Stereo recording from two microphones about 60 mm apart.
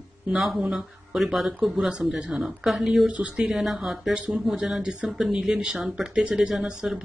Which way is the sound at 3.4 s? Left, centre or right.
Centre.